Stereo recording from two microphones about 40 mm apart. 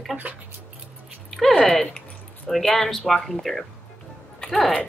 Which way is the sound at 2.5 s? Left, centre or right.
Centre.